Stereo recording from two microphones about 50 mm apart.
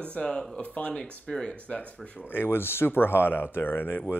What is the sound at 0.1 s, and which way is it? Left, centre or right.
Speech, centre.